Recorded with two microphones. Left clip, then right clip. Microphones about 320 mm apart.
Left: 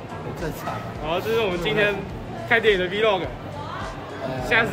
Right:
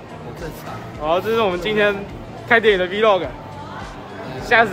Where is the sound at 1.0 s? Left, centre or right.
Centre.